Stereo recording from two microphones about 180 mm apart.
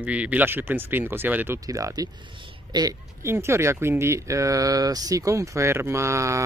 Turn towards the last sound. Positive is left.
turn(degrees=-15)  # may be behind; listen again after turning